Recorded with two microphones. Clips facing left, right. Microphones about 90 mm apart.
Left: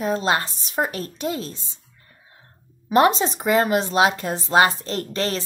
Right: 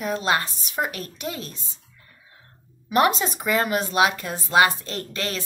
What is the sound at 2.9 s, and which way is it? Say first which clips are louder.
Speech: left 3 dB; 35° left (ahead or behind).